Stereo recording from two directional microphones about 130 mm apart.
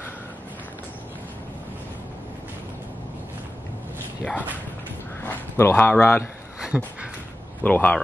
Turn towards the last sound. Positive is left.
turn(degrees=15)  # may be behind; listen again after turning